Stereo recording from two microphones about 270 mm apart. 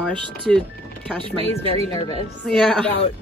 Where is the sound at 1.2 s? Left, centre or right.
Right.